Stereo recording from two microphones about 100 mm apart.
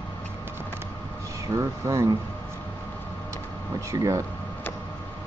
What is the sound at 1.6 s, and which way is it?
Speech, 30° right (ahead or behind).